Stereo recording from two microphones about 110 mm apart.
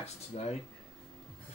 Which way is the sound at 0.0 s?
75° left (ahead or behind).